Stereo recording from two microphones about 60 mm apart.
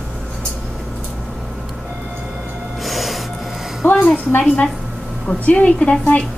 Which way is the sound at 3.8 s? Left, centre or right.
Left.